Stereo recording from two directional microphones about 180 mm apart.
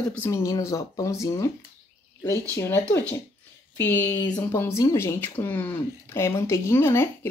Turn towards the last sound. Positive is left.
turn(degrees=15)  # may be behind; listen again after turning